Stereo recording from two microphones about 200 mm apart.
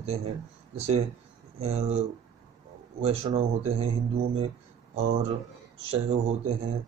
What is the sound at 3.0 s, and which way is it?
A man's voice, 30° right (ahead or behind).